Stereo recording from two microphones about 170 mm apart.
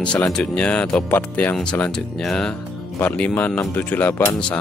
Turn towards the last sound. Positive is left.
turn(degrees=10)  # may be behind; listen again after turning